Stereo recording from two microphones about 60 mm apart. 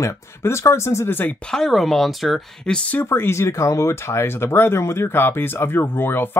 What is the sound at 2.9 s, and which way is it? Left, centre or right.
Speech, left.